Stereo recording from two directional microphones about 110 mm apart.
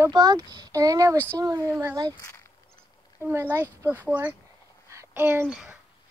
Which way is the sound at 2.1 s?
30° left (ahead or behind).